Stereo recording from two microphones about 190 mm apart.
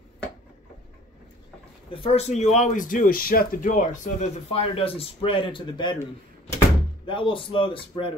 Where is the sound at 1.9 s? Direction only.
30° left (ahead or behind).